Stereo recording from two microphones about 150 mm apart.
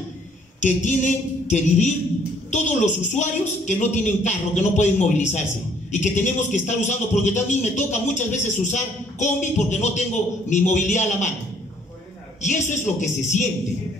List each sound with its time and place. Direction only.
0.6 s a man's voice: 55° left (ahead or behind)
12.4 s a man's voice: 50° left (ahead or behind)